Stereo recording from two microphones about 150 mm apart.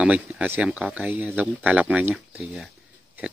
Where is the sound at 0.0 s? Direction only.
10° right (ahead or behind).